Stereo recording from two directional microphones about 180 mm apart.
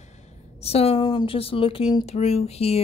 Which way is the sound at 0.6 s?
35° left (ahead or behind).